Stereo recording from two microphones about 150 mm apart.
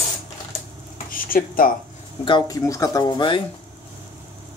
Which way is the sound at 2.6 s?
20° left (ahead or behind).